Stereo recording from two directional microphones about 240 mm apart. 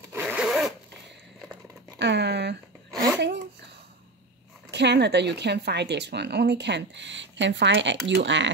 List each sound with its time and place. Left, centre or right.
0.1 s zipper: centre
2.0 s speech: right
3.2 s a sound: right
4.6 s speech: right